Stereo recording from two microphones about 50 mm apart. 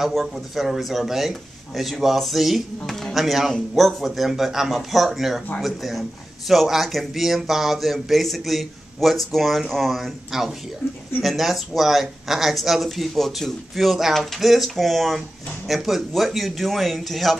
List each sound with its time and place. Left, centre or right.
0.0 s a man's voice: centre